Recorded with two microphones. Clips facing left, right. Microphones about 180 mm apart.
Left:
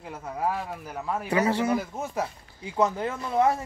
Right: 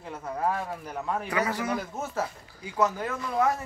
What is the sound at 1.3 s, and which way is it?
Speech, 30° left (ahead or behind).